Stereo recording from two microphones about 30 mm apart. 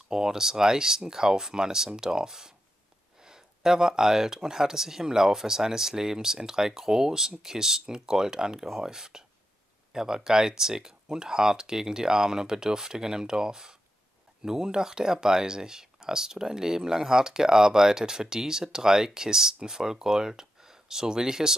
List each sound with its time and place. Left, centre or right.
0.1 s speech: centre